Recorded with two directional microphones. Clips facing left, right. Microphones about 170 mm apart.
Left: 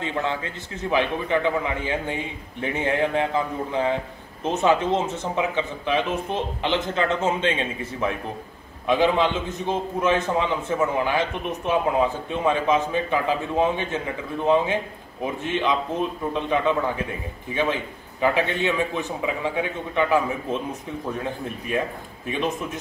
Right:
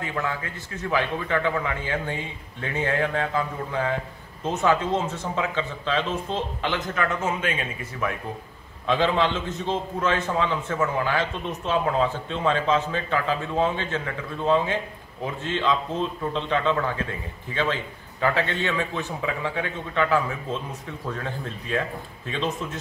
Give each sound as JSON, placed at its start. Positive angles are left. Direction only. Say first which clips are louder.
{"t": 0.0, "sound": "a man's voice", "louder": "left 3 dB", "side_deg": 25}